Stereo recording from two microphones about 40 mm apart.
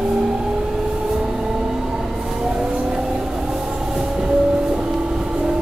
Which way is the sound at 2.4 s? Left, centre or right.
Centre.